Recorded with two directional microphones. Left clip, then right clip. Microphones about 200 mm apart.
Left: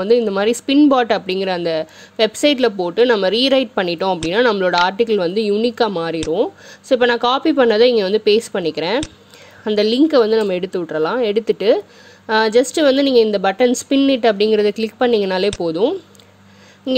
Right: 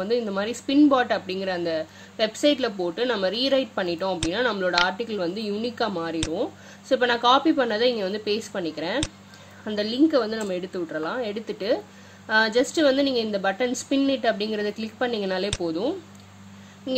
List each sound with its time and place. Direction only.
0.0 s a woman's voice: 40° left (ahead or behind)